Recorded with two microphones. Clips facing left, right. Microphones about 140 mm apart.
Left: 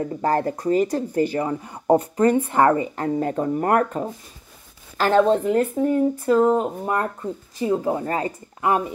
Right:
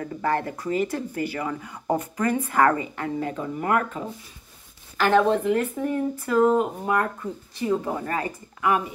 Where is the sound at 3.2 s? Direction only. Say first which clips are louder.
Left 7 dB; 45° left (ahead or behind).